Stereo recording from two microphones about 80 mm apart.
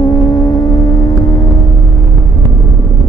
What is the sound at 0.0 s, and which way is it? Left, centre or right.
Vehicle, left.